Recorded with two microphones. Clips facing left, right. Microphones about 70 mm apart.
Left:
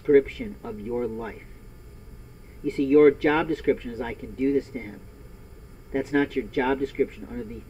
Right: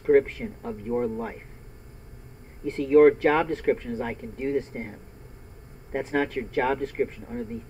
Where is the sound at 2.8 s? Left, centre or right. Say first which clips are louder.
Even; centre.